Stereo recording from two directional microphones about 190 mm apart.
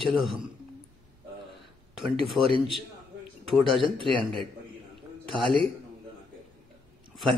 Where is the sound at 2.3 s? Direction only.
30° right (ahead or behind).